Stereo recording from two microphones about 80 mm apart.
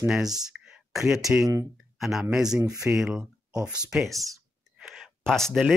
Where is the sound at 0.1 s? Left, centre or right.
Centre.